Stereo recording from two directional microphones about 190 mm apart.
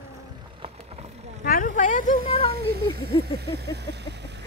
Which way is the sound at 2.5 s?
55° right (ahead or behind).